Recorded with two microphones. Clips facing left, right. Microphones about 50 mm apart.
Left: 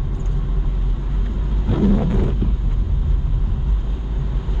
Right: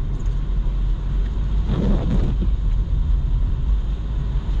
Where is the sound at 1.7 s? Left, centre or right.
Centre.